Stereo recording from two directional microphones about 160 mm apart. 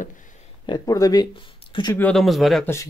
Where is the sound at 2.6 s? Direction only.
15° left (ahead or behind).